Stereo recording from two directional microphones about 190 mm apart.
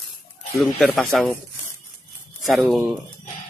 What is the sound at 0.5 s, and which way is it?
Speech, centre (ahead or behind).